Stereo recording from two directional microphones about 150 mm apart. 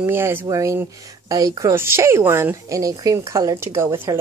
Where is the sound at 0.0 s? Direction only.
15° right (ahead or behind).